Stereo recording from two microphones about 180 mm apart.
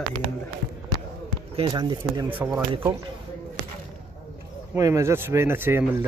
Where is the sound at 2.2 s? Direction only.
10° right (ahead or behind).